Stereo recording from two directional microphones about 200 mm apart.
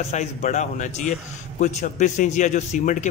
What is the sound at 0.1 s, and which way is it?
Speech, 35° left (ahead or behind).